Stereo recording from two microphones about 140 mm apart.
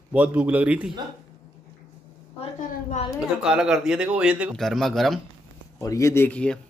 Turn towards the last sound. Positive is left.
turn(degrees=10)  # may be behind; listen again after turning